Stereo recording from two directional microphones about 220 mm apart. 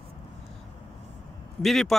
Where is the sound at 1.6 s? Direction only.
Centre (ahead or behind).